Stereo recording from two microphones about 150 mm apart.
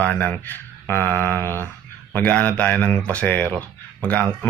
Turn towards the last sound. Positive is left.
turn(degrees=10)  # may be behind; listen again after turning